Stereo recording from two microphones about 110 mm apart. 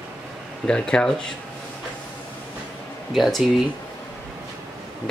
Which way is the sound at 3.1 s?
Centre (ahead or behind).